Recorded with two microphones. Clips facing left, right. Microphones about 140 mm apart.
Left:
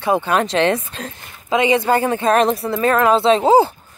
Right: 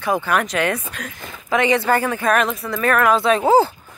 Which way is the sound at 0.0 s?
25° left (ahead or behind).